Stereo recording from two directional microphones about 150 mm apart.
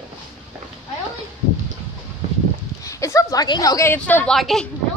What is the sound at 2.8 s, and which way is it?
A woman's voice, 20° left (ahead or behind).